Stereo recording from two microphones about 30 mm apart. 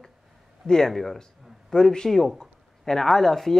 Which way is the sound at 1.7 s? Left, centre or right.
Left.